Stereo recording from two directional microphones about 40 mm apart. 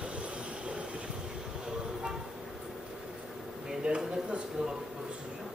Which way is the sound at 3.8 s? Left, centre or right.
Right.